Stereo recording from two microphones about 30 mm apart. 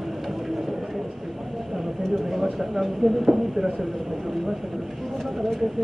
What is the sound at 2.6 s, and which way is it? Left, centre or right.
Speech, centre.